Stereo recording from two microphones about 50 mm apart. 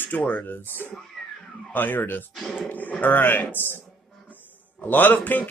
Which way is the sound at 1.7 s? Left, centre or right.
Left.